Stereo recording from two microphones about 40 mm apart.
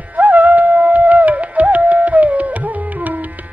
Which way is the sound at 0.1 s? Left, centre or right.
Right.